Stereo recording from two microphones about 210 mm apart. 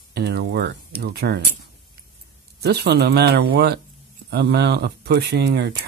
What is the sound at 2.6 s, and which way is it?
Speech, 50° right (ahead or behind).